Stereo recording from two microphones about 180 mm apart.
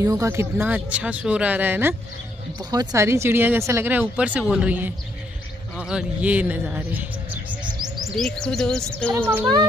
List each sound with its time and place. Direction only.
0.0 s speech: 20° right (ahead or behind)
8.2 s speech: 5° left (ahead or behind)
9.3 s speech: 15° right (ahead or behind)